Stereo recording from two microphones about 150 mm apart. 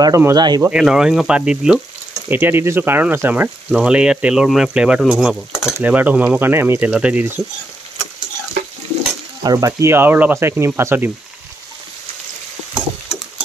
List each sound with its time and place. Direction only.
0.0 s speech: 25° right (ahead or behind)
0.6 s speech: 10° right (ahead or behind)
9.4 s speech: 25° right (ahead or behind)